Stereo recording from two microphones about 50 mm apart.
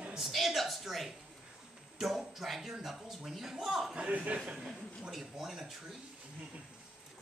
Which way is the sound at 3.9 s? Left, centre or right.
Right.